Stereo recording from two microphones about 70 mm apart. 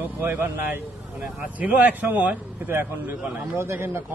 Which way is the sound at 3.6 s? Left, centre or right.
Right.